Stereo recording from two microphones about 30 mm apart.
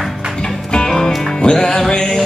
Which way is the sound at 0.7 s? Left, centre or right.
Left.